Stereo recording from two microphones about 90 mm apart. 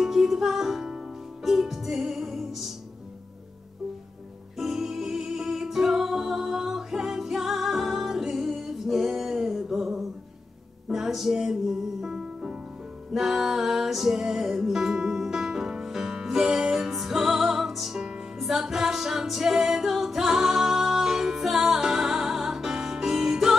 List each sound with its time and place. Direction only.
0.0 s music: 5° right (ahead or behind)
4.6 s music: 5° right (ahead or behind)